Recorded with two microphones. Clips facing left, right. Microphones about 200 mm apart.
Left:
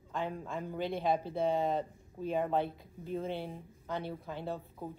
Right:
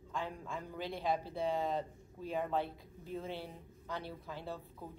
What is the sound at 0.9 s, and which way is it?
Speech, 55° left (ahead or behind).